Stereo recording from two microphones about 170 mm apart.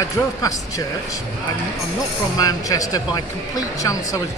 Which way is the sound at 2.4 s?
20° left (ahead or behind).